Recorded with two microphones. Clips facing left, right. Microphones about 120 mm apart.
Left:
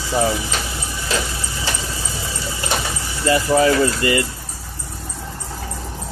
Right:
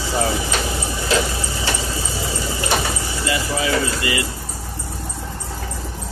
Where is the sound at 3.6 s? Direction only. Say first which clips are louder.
Left 5 dB; 45° left (ahead or behind).